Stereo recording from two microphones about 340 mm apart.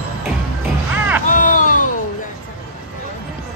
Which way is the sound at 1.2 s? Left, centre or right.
Left.